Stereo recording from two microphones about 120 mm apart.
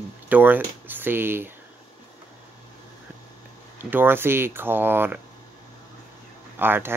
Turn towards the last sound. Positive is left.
turn(degrees=-15)  # may be behind; listen again after turning